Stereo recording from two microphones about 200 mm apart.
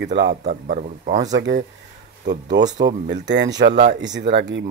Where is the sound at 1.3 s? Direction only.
65° right (ahead or behind).